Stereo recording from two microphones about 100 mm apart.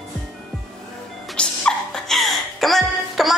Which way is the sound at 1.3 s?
10° left (ahead or behind).